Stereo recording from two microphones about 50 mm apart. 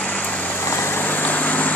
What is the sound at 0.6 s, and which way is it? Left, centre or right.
Vehicle, left.